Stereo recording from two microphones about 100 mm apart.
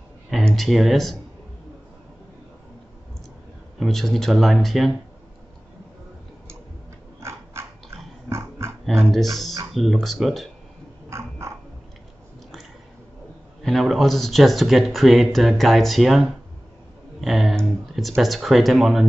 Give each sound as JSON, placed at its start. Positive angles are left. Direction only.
{"t": 0.3, "sound": "speech", "side_deg": 0}
{"t": 3.8, "sound": "speech", "side_deg": 0}
{"t": 7.2, "sound": "dog", "side_deg": -25}
{"t": 8.3, "sound": "pig", "side_deg": -30}
{"t": 9.1, "sound": "speech", "side_deg": 0}
{"t": 11.1, "sound": "a sound", "side_deg": -30}
{"t": 13.6, "sound": "speech", "side_deg": 0}